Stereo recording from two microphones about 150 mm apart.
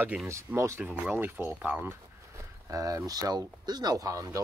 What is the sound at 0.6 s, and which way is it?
Speech, 20° right (ahead or behind).